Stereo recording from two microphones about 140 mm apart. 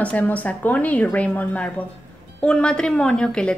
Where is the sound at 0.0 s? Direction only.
10° left (ahead or behind).